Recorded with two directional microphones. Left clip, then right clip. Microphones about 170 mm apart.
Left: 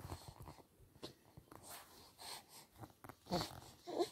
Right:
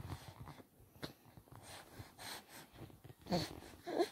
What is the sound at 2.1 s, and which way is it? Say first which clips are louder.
Snort: right 3 dB; 45° right (ahead or behind).